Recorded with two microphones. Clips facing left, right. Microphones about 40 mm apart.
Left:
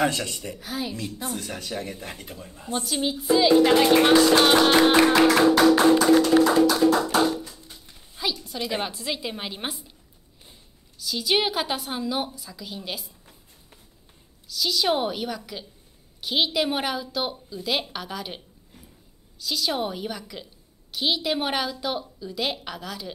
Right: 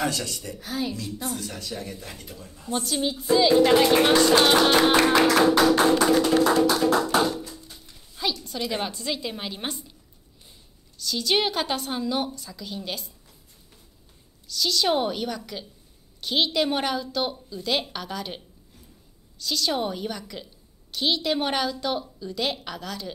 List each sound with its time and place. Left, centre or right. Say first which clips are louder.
0.0 s speech: left 3 dB; left
0.6 s speech: right 3 dB; centre
0.9 s speech: even; left
2.7 s a woman's voice: even; centre
6.6 s speech: left 2 dB; centre
7.2 s music: left 1 dB; centre
7.8 s a sound: even; centre
8.2 s a woman's voice: right 1 dB; centre
11.0 s a woman's voice: even; centre
14.5 s a woman's voice: even; centre
19.4 s a woman's voice: right 1 dB; centre